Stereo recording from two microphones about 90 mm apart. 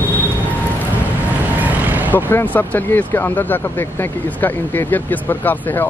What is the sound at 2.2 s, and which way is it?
Speech, 25° left (ahead or behind).